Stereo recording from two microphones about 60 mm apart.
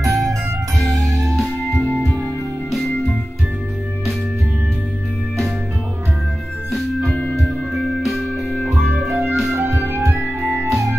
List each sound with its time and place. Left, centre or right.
0.0 s music: centre
6.7 s music: centre
9.6 s music: right
10.0 s music: centre